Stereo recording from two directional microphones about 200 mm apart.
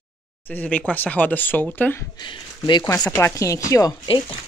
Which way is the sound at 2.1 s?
25° left (ahead or behind).